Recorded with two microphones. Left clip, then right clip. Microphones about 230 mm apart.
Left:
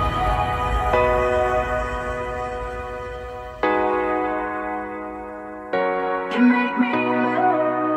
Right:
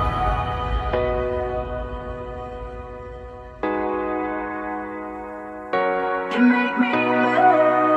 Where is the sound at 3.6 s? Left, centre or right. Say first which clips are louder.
Left 4 dB; left.